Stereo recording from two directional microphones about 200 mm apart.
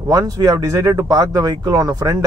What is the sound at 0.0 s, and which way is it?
A man's voice, 15° right (ahead or behind).